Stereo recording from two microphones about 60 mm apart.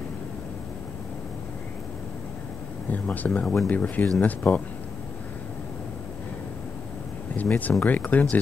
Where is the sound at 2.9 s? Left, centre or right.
Left.